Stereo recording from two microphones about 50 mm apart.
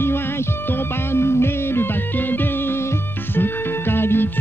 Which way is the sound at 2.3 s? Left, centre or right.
Left.